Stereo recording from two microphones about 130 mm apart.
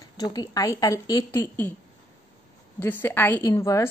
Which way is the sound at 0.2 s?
30° left (ahead or behind).